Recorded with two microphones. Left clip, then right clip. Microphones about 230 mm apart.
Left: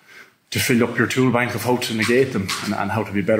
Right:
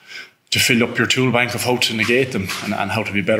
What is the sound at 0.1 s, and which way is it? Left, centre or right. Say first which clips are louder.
Speech: right 7 dB; right.